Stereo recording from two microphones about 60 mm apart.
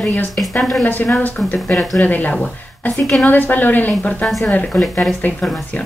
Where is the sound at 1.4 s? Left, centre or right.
Centre.